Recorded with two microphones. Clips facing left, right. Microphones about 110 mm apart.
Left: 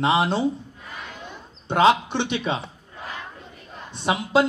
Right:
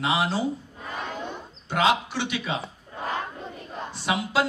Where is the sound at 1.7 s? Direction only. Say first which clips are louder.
Left 5 dB; 25° left (ahead or behind).